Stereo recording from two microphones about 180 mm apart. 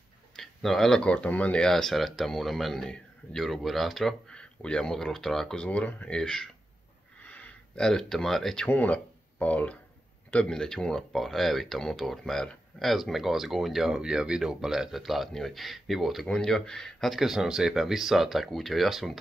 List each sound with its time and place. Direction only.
0.4 s speech: centre (ahead or behind)
7.2 s a sound: 10° left (ahead or behind)
8.6 s speech: 10° left (ahead or behind)